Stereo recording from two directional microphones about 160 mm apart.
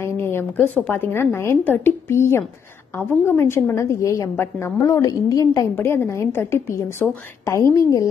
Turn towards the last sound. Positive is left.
turn(degrees=20)  # may be behind; listen again after turning